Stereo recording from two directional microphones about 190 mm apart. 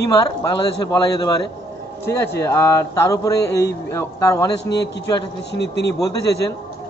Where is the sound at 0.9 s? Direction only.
20° left (ahead or behind).